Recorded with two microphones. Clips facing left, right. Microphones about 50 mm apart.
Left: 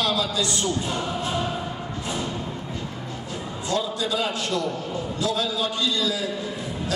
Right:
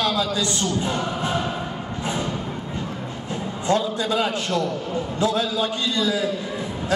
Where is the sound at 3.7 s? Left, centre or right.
Right.